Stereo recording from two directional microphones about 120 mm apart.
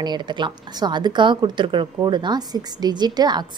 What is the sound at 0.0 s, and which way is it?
A woman's voice, 40° right (ahead or behind).